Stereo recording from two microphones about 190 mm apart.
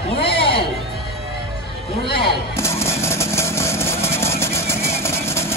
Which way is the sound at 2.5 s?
15° left (ahead or behind).